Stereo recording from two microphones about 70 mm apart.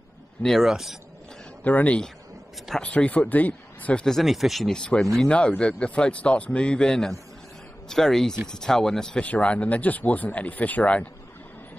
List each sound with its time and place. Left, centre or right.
0.4 s speech: centre
0.7 s speech: centre
1.6 s speech: left
4.0 s speech: centre
4.7 s speech: centre
9.2 s speech: centre